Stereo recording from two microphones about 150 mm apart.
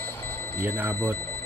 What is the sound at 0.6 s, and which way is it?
Speech, 15° right (ahead or behind).